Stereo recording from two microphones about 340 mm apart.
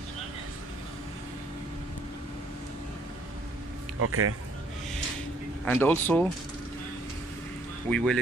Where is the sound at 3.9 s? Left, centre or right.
Right.